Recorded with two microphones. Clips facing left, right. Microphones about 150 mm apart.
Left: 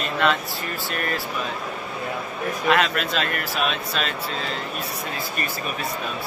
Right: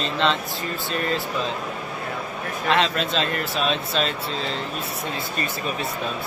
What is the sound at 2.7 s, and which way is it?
Speech, 30° right (ahead or behind).